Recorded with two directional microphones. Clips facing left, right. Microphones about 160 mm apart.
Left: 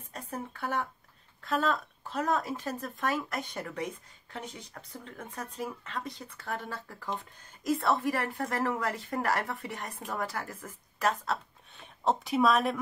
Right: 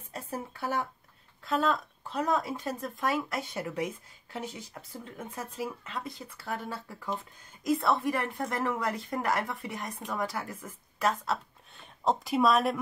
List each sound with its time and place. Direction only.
0.1 s speech: 10° right (ahead or behind)